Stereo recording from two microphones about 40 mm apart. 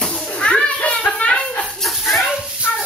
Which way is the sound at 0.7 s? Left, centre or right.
Left.